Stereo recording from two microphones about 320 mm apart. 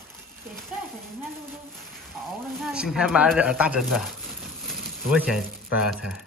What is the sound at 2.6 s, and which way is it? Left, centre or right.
Speech, centre.